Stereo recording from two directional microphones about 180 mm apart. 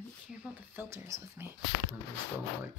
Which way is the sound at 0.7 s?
15° right (ahead or behind).